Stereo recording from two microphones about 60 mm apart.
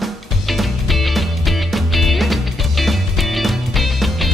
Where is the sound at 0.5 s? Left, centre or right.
Centre.